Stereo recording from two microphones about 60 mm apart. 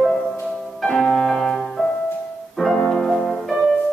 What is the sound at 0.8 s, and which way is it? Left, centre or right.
Music, centre.